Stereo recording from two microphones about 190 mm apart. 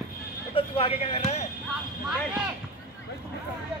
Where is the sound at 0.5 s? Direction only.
30° left (ahead or behind).